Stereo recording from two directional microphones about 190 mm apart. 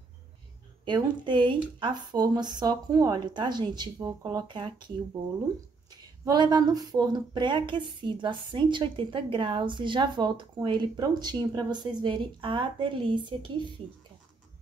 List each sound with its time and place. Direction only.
0.8 s speech: 25° right (ahead or behind)